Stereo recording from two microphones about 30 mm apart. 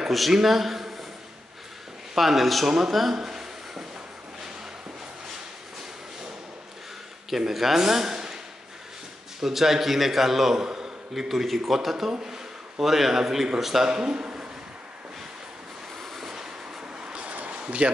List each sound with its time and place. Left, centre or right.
0.3 s a man's voice: centre
2.1 s a man's voice: centre
2.9 s a man's voice: centre
3.2 s a sound: centre
7.2 s a man's voice: centre
9.4 s a man's voice: centre
11.2 s a man's voice: centre
12.2 s a man's voice: centre
13.8 s speech: right
14.2 s a sound: right
17.0 s vehicle: right
17.5 s a sound: right